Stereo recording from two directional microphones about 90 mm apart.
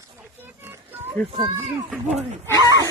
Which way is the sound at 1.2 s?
20° left (ahead or behind).